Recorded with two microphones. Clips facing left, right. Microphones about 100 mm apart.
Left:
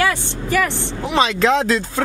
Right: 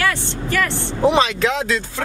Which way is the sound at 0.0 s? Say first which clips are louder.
Left 2 dB; 15° left (ahead or behind).